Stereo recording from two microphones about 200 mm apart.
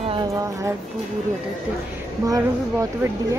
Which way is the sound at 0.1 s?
20° right (ahead or behind).